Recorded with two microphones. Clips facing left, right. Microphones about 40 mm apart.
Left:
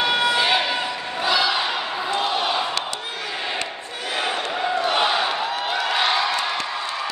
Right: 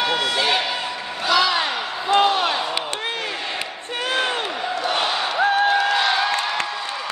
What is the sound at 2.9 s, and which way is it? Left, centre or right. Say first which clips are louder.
Crowd: right 3 dB; right.